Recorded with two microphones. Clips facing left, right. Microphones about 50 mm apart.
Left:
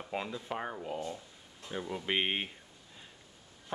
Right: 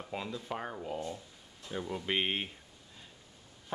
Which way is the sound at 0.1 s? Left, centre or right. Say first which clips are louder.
Left 2 dB; centre.